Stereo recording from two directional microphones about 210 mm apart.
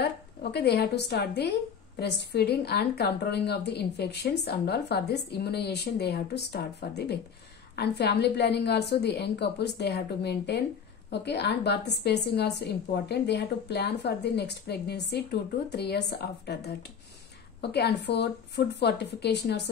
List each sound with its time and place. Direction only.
0.0 s a woman's voice: 50° left (ahead or behind)